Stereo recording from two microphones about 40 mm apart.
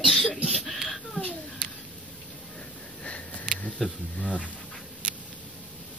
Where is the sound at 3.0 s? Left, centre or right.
Left.